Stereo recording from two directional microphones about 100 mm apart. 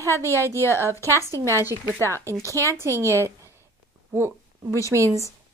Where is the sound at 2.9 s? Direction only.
25° left (ahead or behind).